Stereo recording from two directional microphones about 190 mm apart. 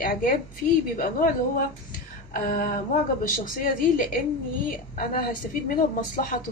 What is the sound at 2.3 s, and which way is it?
Speech, 45° left (ahead or behind).